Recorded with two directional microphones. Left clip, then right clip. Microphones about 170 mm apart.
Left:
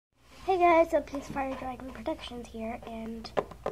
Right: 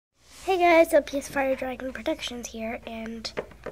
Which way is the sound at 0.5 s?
15° right (ahead or behind).